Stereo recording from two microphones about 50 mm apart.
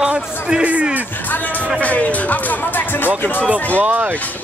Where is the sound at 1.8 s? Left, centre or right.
Left.